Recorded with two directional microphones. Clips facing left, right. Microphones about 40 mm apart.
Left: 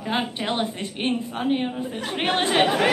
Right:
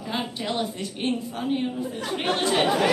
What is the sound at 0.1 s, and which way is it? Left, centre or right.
A woman's voice, left.